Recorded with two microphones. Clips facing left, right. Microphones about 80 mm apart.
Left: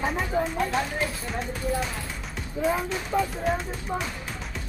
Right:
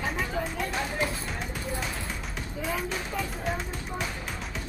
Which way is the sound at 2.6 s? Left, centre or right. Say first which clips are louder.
Left 6 dB; left.